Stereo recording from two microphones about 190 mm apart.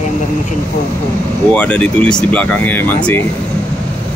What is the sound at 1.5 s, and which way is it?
Speech, 5° left (ahead or behind).